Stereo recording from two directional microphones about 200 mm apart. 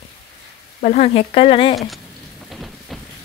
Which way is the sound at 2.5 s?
Centre (ahead or behind).